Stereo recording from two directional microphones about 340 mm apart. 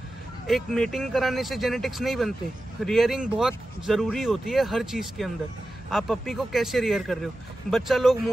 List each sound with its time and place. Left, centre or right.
0.5 s speech: centre